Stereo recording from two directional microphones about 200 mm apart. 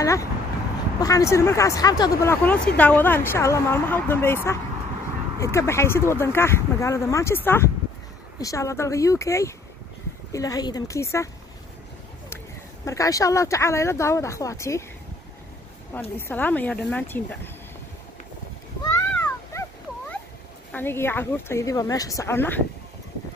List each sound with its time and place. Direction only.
0.0 s speech: 15° left (ahead or behind)
12.8 s speech: 15° left (ahead or behind)
15.9 s speech: 10° left (ahead or behind)
18.8 s cat: 15° left (ahead or behind)
20.7 s speech: 10° left (ahead or behind)